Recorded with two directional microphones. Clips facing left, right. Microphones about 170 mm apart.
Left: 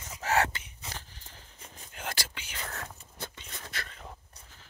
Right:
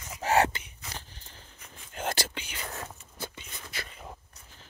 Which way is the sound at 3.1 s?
5° right (ahead or behind).